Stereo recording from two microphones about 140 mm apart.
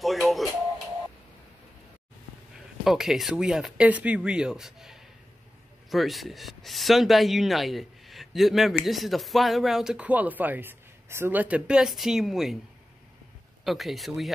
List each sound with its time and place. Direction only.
0.0 s a sound: centre (ahead or behind)
2.8 s a man's voice: centre (ahead or behind)
13.7 s a man's voice: centre (ahead or behind)